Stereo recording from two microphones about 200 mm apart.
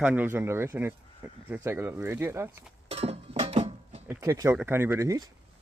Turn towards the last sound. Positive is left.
turn(degrees=-15)  # may be behind; listen again after turning